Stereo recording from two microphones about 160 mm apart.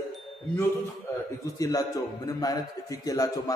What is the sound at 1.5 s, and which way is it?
A man's voice, 20° left (ahead or behind).